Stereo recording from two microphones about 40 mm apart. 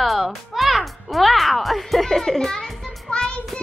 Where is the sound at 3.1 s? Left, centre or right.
Left.